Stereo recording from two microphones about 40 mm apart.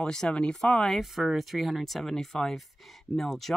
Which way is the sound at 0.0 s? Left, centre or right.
Centre.